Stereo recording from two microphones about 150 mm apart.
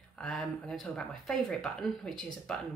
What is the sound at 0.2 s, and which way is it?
Speech, 5° left (ahead or behind).